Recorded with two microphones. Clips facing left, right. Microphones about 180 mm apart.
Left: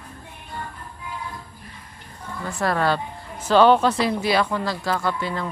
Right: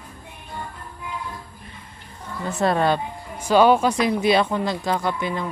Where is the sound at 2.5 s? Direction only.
20° right (ahead or behind).